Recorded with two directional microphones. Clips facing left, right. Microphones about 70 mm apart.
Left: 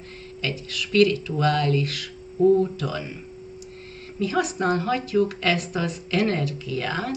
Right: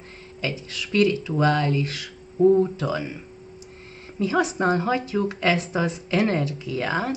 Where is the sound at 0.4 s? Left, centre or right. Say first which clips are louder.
Even; right.